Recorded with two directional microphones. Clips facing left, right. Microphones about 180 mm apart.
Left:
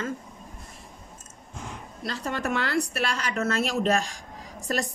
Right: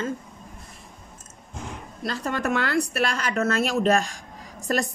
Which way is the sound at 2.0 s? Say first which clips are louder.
Right 3 dB; 50° right (ahead or behind).